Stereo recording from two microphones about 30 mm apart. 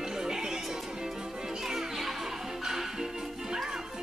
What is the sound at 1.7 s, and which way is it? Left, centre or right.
Music, centre.